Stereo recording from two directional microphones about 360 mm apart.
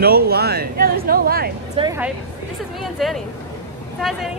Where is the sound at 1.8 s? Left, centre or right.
Centre.